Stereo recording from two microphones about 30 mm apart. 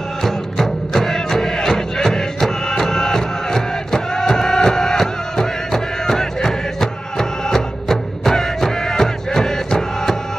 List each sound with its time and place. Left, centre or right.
0.2 s music: centre